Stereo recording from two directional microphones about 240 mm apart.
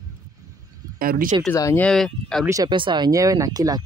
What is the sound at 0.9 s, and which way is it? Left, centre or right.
Speech, right.